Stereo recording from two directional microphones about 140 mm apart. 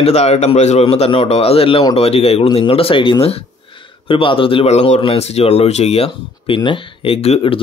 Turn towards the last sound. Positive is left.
turn(degrees=45)  # may be behind; listen again after turning